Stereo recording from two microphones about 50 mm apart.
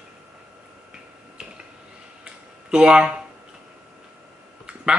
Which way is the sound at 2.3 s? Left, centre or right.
Centre.